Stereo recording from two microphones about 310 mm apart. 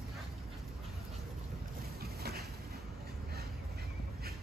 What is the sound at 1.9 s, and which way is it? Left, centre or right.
Vehicle, right.